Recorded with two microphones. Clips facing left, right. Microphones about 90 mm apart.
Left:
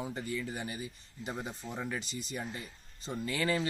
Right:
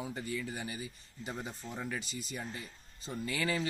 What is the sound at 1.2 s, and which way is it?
Speech, 5° left (ahead or behind).